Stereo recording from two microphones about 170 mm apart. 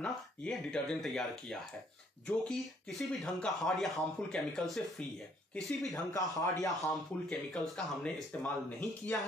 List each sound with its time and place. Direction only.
0.0 s speech: 5° left (ahead or behind)
5.9 s a man's voice: 20° left (ahead or behind)
6.7 s speech: centre (ahead or behind)